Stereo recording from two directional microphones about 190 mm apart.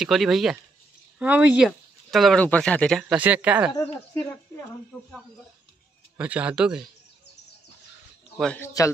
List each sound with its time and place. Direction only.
0.0 s speech: centre (ahead or behind)
3.0 s speech: 5° right (ahead or behind)
3.7 s speech: 15° left (ahead or behind)
6.1 s speech: 10° right (ahead or behind)
8.4 s speech: 5° left (ahead or behind)